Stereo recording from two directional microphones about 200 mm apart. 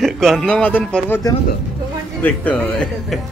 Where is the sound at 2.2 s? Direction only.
10° left (ahead or behind).